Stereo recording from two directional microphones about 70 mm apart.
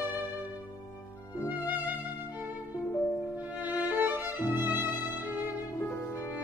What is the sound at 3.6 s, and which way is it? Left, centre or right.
Violin, right.